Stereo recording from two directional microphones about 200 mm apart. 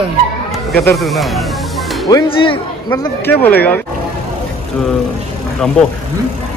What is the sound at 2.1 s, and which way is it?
Speech, 25° left (ahead or behind).